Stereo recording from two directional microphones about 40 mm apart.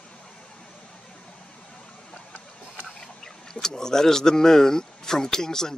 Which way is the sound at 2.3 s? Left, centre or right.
Left.